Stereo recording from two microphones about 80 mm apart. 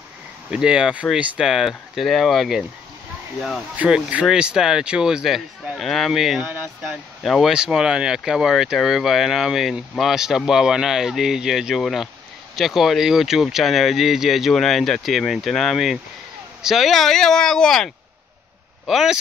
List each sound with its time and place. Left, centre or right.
0.5 s speech: centre
1.4 s speech: centre
3.7 s speech: centre
6.4 s speech: right
6.8 s speech: centre
18.9 s speech: centre